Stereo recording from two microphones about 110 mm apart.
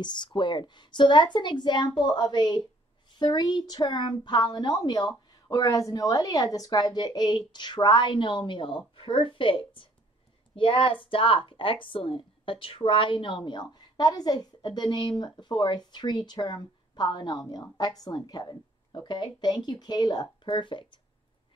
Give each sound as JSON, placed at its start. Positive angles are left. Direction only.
{"t": 0.0, "sound": "a woman's voice", "side_deg": 45}